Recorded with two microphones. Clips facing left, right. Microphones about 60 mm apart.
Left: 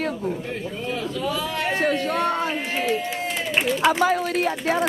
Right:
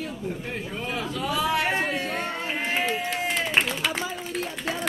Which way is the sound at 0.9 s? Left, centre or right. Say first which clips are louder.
Left 1 dB; centre.